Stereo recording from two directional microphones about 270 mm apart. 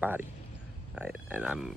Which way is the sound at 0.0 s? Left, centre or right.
Centre.